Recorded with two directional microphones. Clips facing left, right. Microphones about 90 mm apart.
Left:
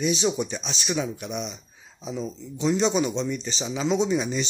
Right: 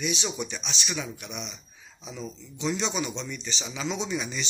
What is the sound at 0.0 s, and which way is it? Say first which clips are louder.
Speech: left 7 dB; 35° left (ahead or behind).